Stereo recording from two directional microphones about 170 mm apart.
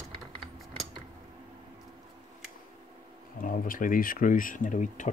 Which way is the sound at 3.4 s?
55° left (ahead or behind).